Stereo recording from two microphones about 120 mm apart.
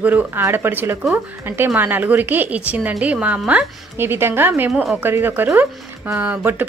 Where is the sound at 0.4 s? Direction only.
20° right (ahead or behind).